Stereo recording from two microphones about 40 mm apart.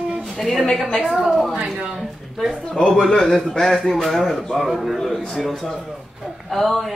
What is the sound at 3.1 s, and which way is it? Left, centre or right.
Speech, left.